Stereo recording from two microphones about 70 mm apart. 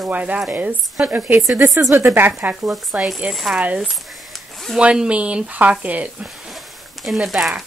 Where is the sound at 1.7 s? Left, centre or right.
Right.